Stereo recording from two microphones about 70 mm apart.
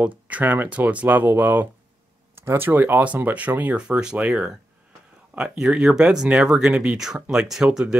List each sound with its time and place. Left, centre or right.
0.0 s speech: right